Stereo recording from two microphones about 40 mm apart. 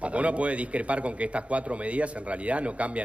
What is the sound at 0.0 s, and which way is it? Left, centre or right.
A man's voice, right.